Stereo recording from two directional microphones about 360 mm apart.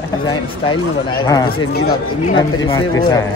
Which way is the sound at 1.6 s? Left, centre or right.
Left.